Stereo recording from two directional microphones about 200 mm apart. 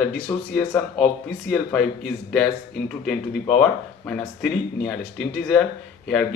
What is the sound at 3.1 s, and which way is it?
Speech, 5° left (ahead or behind).